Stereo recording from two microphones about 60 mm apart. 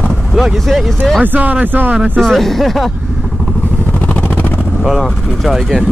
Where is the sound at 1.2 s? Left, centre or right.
Right.